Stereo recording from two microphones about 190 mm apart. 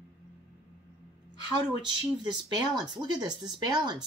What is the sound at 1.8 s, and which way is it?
Speech, 25° right (ahead or behind).